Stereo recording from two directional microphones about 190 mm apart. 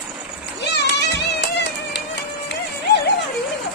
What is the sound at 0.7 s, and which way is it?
Run, 65° left (ahead or behind).